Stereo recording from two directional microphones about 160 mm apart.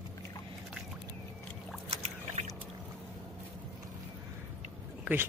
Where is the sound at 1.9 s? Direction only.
45° right (ahead or behind).